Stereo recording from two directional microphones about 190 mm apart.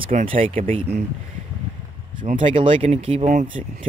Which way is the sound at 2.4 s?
25° right (ahead or behind).